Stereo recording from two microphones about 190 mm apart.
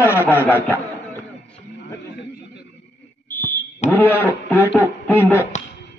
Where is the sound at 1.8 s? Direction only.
60° left (ahead or behind).